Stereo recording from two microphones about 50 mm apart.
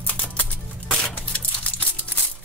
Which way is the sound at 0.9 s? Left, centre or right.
Left.